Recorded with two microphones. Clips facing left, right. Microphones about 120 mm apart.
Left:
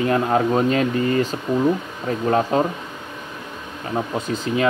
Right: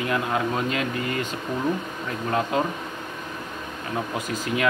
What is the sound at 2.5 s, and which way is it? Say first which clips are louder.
Speech: left 3 dB; 35° left (ahead or behind).